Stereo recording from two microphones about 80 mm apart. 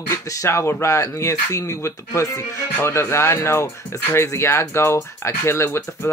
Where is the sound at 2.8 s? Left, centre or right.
Left.